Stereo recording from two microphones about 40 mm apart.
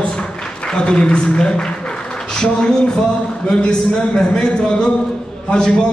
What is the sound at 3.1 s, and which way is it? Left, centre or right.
Speech, left.